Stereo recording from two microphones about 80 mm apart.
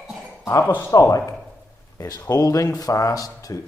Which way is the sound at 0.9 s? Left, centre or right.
Left.